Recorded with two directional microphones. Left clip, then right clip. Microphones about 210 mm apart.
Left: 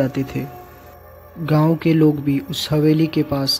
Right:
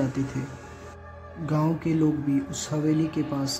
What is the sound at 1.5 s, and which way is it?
Speech, 25° left (ahead or behind).